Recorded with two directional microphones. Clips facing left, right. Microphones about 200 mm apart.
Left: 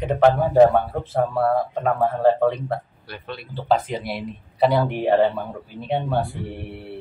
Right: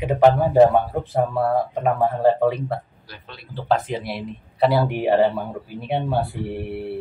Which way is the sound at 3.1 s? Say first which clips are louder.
Left 8 dB; 60° left (ahead or behind).